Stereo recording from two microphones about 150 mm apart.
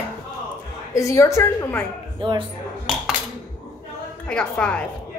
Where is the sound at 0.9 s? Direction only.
20° left (ahead or behind).